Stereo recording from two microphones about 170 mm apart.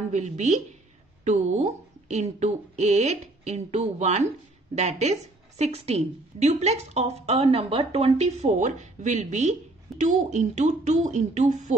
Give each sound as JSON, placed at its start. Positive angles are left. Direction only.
{"t": 0.1, "sound": "a woman's voice", "side_deg": -45}